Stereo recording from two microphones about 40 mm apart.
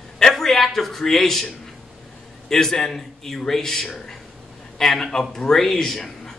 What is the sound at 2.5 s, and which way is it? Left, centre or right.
A woman's voice, centre.